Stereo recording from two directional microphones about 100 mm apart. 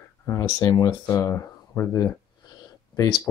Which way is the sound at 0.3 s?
35° left (ahead or behind).